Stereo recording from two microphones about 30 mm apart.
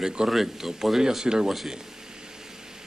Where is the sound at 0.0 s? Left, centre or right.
Right.